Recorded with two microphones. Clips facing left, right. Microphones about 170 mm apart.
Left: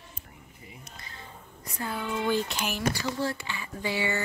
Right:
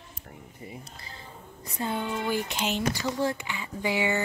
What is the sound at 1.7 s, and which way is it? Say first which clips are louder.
Speech: right 2 dB; 25° right (ahead or behind).